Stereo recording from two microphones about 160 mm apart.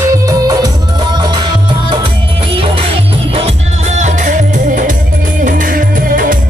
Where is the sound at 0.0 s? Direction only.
20° right (ahead or behind).